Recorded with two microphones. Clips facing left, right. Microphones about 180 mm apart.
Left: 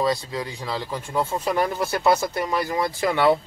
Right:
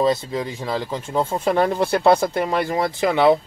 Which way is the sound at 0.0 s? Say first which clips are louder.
Right 4 dB; 25° right (ahead or behind).